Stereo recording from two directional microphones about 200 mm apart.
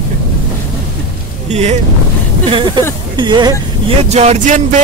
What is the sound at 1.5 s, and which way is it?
Speech, 35° right (ahead or behind).